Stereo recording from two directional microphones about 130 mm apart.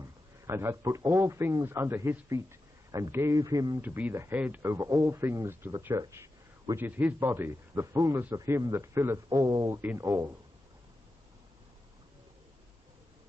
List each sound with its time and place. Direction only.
0.5 s speech: 20° right (ahead or behind)
3.8 s speech: 15° right (ahead or behind)